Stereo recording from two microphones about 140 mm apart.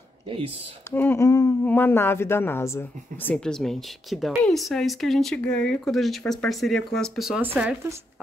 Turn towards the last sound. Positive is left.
turn(degrees=-10)  # may be behind; listen again after turning